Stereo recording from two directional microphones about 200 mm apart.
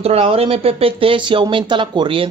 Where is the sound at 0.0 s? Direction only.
30° right (ahead or behind).